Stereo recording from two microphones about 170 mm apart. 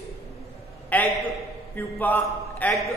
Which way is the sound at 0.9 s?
10° left (ahead or behind).